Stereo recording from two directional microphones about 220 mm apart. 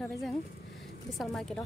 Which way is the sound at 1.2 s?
Centre (ahead or behind).